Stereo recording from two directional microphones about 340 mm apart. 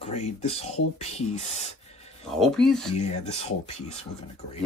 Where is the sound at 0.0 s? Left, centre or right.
Centre.